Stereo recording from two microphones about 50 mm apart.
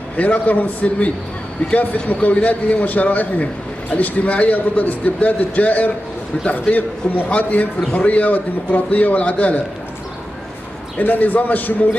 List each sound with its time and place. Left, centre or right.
0.2 s a man's voice: left
11.0 s a man's voice: left